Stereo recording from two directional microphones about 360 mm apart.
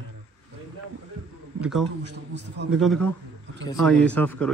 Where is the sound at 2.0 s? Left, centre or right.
Right.